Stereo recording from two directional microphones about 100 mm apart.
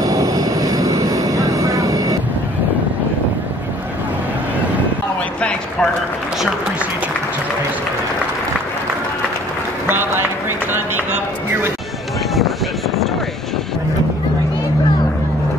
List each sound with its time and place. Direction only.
0.0 s vehicle: 35° right (ahead or behind)
5.4 s a sound: 10° left (ahead or behind)
9.8 s music: 20° right (ahead or behind)
10.7 s run: 20° right (ahead or behind)